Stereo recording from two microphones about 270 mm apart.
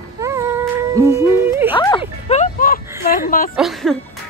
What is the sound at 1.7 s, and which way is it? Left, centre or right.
Speech, centre.